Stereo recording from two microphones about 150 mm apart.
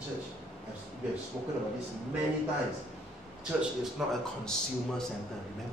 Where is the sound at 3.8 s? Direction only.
5° left (ahead or behind).